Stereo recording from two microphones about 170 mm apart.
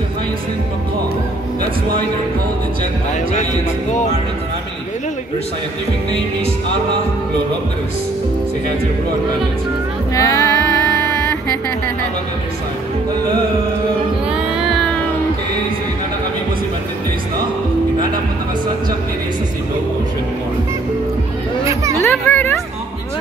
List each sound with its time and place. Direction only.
10.1 s music: 20° left (ahead or behind)
22.0 s speech: 10° left (ahead or behind)